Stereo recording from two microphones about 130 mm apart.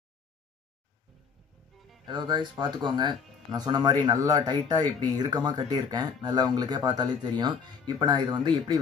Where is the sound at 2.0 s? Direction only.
35° right (ahead or behind).